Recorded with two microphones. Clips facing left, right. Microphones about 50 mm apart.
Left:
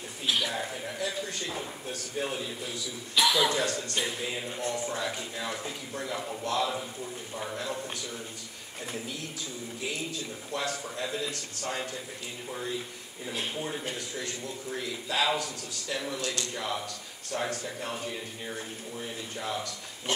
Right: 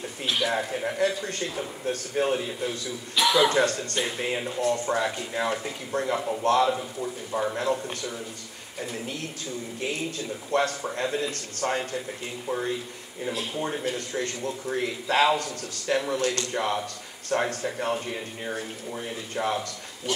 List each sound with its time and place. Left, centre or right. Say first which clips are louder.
0.5 s a man's voice: right 7 dB; right
3.2 s speech: right 4 dB; centre
3.4 s a man's voice: right 6 dB; right
10.5 s a man's voice: right 8 dB; right
13.8 s a man's voice: right 6 dB; right
20.1 s pig: right 2 dB; left